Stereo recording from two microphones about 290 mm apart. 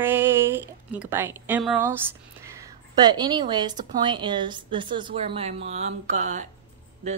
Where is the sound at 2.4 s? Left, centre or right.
Centre.